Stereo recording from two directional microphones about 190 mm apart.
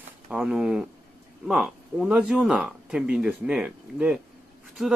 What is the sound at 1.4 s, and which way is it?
Speech, centre (ahead or behind).